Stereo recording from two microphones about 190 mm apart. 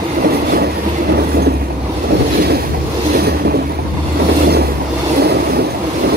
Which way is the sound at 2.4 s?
55° right (ahead or behind).